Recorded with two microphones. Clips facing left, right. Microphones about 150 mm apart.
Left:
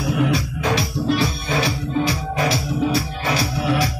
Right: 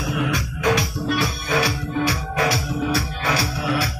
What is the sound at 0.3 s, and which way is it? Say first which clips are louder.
Music: even; 25° left (ahead or behind).